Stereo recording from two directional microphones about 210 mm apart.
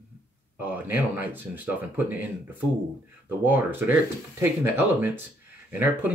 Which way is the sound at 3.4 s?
10° right (ahead or behind).